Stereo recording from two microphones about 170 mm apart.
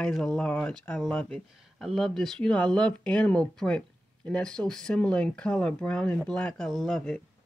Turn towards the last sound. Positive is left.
turn(degrees=5)  # may be behind; listen again after turning